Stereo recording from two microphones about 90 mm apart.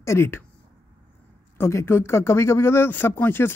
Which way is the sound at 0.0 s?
30° left (ahead or behind).